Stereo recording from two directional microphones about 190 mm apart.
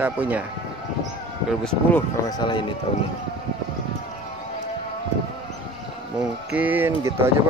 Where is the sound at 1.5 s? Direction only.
5° left (ahead or behind).